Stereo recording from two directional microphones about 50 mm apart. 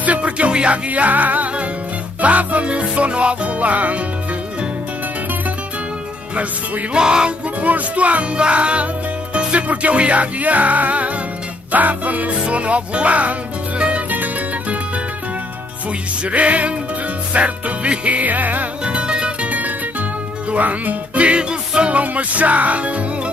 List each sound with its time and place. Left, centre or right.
0.0 s music: right
6.3 s music: right
7.6 s music: right
14.1 s music: right
16.3 s music: right
18.9 s music: centre